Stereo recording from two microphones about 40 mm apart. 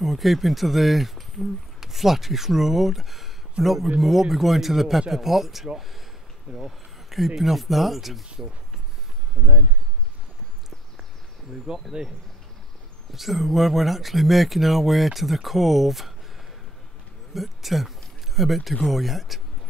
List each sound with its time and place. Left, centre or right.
0.0 s speech: centre
11.7 s speech: centre
13.1 s speech: centre
17.3 s a man's voice: centre